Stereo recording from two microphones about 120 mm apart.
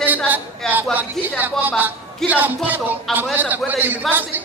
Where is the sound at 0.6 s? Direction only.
5° left (ahead or behind).